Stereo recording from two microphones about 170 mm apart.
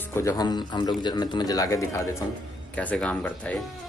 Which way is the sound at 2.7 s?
5° left (ahead or behind).